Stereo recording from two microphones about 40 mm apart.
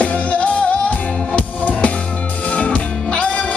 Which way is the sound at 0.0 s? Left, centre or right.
Left.